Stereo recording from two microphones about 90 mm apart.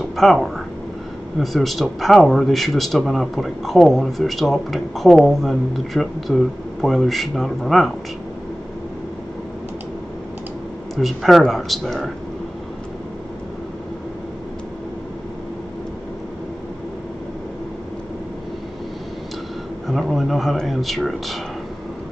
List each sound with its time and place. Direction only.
0.0 s a sound: centre (ahead or behind)
1.4 s speech: centre (ahead or behind)
11.0 s speech: centre (ahead or behind)
19.9 s speech: centre (ahead or behind)